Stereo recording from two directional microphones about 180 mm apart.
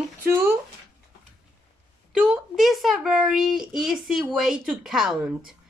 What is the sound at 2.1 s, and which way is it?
A child's voice, 5° right (ahead or behind).